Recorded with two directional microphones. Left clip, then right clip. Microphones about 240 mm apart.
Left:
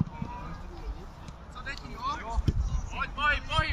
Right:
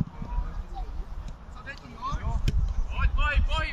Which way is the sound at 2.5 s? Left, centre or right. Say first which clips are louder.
Even; right.